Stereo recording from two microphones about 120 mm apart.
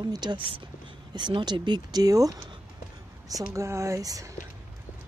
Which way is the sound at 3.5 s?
25° right (ahead or behind).